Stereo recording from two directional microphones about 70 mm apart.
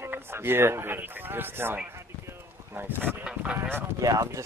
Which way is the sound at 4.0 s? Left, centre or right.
Right.